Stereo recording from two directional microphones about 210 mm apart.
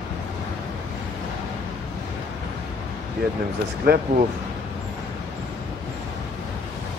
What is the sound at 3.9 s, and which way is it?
Speech, 45° right (ahead or behind).